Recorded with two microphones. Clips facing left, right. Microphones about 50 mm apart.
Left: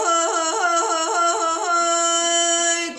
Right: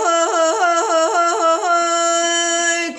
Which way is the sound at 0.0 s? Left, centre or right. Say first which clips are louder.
Right 5 dB; right.